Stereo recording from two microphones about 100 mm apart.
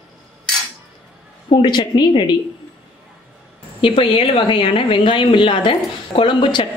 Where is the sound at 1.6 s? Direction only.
50° left (ahead or behind).